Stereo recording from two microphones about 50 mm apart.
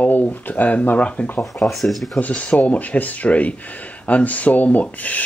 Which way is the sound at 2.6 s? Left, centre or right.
Left.